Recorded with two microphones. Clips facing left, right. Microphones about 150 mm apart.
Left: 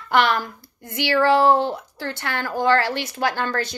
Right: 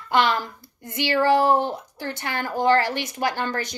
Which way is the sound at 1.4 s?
20° right (ahead or behind).